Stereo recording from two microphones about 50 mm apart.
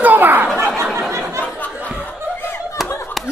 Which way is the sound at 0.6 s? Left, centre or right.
Right.